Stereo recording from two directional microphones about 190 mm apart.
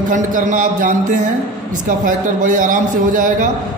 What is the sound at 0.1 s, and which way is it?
A man's voice, 45° right (ahead or behind).